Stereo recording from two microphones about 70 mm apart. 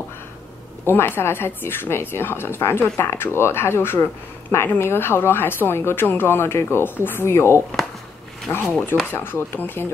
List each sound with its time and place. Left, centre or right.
0.8 s speech: left
9.1 s speech: left